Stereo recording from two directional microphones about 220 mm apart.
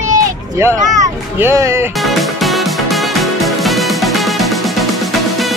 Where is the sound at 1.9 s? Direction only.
Centre (ahead or behind).